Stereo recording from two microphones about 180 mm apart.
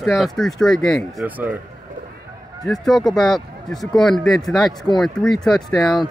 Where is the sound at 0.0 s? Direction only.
Centre (ahead or behind).